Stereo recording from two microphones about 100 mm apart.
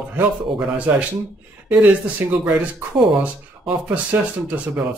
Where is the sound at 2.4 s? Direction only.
15° right (ahead or behind).